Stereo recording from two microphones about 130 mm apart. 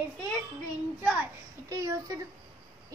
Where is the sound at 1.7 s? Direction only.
25° right (ahead or behind).